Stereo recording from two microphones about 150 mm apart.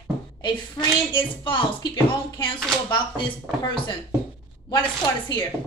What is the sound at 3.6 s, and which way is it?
Speech, 30° left (ahead or behind).